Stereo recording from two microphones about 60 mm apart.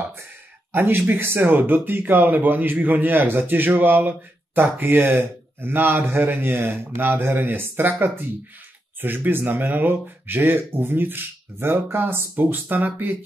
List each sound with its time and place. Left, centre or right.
0.7 s speech: right